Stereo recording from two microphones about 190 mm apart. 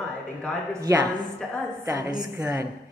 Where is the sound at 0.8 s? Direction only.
15° right (ahead or behind).